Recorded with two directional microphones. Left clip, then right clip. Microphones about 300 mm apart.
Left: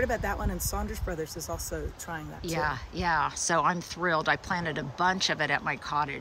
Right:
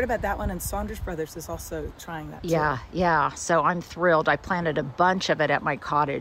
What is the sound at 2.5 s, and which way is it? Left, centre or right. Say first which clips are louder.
Speech: right 6 dB; centre.